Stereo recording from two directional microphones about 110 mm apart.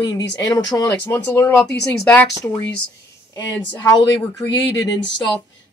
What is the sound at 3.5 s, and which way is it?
Speech, 25° left (ahead or behind).